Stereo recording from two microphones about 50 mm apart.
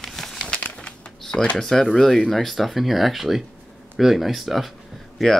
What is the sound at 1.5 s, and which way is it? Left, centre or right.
Speech, centre.